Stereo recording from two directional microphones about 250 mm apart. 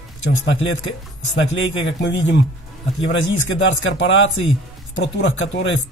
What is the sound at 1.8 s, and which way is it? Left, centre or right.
Speech, left.